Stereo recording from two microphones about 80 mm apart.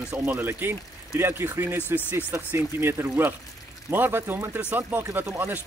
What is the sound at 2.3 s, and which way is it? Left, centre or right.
Speech, right.